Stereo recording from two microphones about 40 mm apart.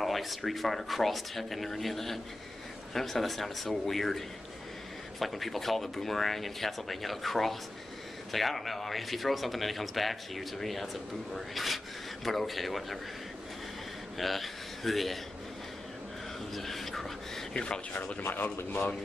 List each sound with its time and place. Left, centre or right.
0.0 s a man's voice: centre
5.2 s a man's voice: centre
14.1 s speech: centre
16.5 s speech: centre
18.2 s speech: left